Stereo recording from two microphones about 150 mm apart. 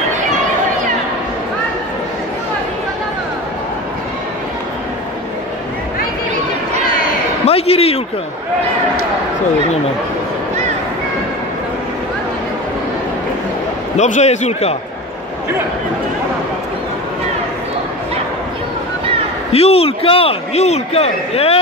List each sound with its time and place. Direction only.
7.4 s a man's voice: 40° left (ahead or behind)
13.9 s a man's voice: 50° left (ahead or behind)
19.5 s a man's voice: 40° left (ahead or behind)